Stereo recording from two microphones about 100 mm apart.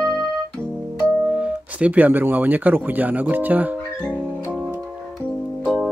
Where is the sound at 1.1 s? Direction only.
10° right (ahead or behind).